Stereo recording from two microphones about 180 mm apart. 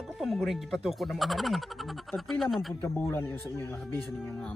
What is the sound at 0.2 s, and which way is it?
Speech, centre (ahead or behind).